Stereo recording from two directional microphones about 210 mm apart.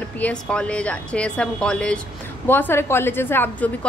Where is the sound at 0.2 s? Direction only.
5° left (ahead or behind).